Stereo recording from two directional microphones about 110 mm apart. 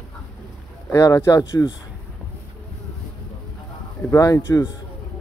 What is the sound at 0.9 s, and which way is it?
Speech, 25° left (ahead or behind).